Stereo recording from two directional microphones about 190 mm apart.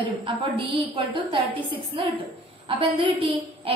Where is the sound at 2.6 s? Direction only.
30° right (ahead or behind).